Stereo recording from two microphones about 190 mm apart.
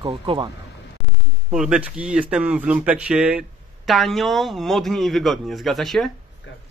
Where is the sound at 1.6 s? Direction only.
5° right (ahead or behind).